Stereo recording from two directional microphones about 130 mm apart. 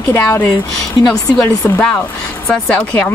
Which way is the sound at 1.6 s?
15° left (ahead or behind).